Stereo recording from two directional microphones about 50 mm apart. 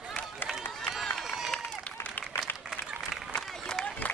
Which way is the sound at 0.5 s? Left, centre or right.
Centre.